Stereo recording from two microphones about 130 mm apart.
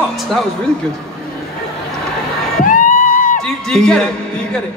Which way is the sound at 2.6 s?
90° left.